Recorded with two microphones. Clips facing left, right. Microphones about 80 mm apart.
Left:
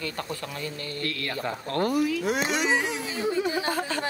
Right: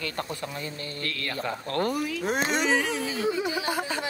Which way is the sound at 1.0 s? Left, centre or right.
Left.